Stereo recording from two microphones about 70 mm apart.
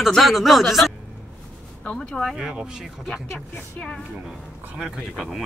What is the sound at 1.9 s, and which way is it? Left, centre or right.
Speech, centre.